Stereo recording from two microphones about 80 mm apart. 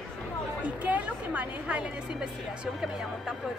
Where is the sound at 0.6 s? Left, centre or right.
Centre.